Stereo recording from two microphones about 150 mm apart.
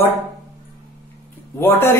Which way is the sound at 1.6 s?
15° left (ahead or behind).